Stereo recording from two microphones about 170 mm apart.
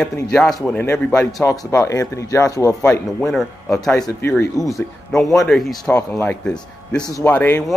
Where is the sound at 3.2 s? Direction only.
Centre (ahead or behind).